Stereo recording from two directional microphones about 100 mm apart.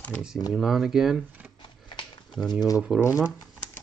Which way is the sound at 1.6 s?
55° left (ahead or behind).